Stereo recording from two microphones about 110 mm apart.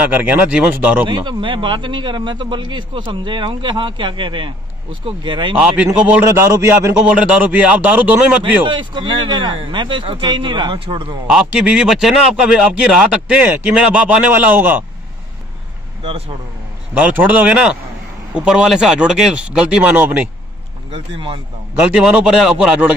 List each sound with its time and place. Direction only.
0.0 s a man's voice: 15° right (ahead or behind)
1.0 s a man's voice: 45° right (ahead or behind)
5.9 s a man's voice: 15° right (ahead or behind)
6.4 s a man's voice: 25° right (ahead or behind)
7.1 s a man's voice: 10° right (ahead or behind)
8.6 s a man's voice: 45° right (ahead or behind)
11.2 s a man's voice: 5° right (ahead or behind)
13.4 s a man's voice: 20° right (ahead or behind)
16.0 s speech: 55° right (ahead or behind)
16.9 s a man's voice: 15° right (ahead or behind)
20.9 s a man's voice: 50° right (ahead or behind)
21.9 s speech: 5° right (ahead or behind)